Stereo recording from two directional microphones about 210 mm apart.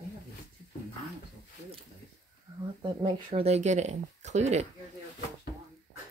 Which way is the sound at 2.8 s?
30° right (ahead or behind).